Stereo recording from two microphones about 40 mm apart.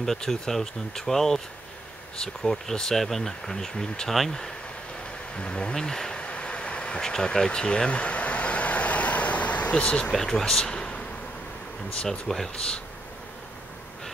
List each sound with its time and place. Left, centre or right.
0.0 s speech: centre
5.3 s speech: left
5.8 s speech: centre
6.1 s vehicle: left
7.0 s speech: centre
7.9 s vehicle: left
10.1 s speech: centre
12.1 s speech: centre